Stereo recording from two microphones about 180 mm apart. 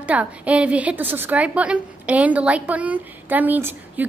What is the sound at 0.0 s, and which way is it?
A woman's voice, 5° right (ahead or behind).